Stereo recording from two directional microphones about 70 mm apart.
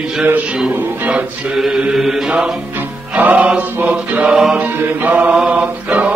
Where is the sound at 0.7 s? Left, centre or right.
Right.